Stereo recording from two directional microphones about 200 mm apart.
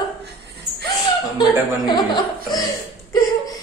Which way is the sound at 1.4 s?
20° left (ahead or behind).